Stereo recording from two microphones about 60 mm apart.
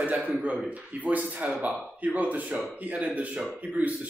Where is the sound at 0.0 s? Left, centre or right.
Right.